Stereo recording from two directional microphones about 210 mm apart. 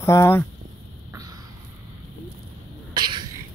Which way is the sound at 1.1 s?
15° right (ahead or behind).